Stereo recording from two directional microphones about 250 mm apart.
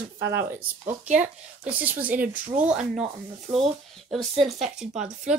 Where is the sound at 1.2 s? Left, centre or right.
Centre.